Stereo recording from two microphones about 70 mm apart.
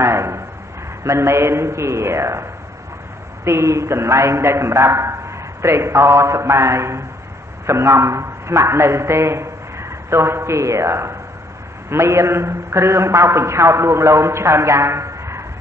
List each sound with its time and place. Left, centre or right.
0.0 s a sound: right
1.0 s a man's voice: right
3.4 s a man's voice: right